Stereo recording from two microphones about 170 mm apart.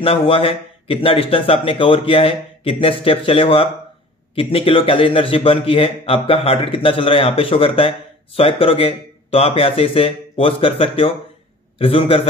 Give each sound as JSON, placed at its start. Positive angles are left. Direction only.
{"t": 0.0, "sound": "a man's voice", "side_deg": 30}